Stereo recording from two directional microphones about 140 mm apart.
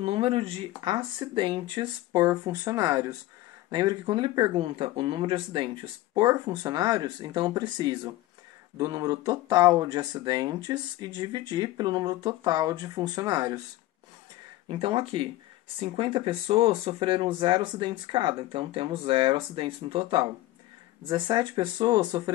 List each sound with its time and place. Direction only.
0.0 s speech: 40° right (ahead or behind)
2.2 s speech: 25° right (ahead or behind)
14.7 s speech: 40° right (ahead or behind)